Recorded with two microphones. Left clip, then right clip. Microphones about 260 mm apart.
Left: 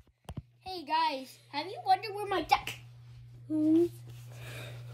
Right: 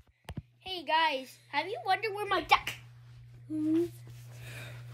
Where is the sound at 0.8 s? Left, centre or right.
Centre.